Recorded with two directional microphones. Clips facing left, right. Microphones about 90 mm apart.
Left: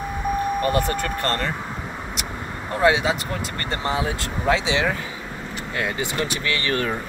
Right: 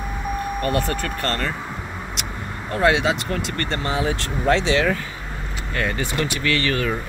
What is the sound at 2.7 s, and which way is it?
Speech, 5° left (ahead or behind).